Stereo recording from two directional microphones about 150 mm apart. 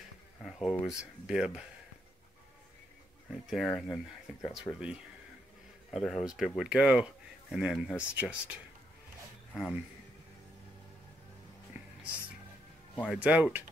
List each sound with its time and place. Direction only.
0.5 s speech: centre (ahead or behind)
3.3 s speech: centre (ahead or behind)
4.7 s speech: 20° left (ahead or behind)
5.9 s speech: centre (ahead or behind)
9.5 s speech: 5° left (ahead or behind)
13.0 s speech: 5° right (ahead or behind)